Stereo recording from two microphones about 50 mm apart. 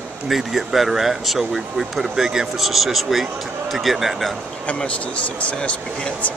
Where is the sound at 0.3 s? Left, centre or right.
Centre.